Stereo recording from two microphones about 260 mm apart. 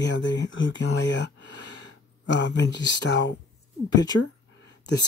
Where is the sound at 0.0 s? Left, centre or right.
Left.